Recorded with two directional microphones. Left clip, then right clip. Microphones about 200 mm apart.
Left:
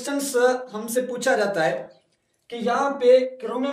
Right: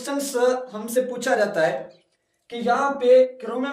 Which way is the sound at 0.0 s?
15° left (ahead or behind).